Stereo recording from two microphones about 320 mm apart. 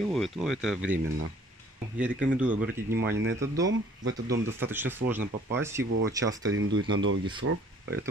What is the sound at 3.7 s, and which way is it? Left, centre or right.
Speech, right.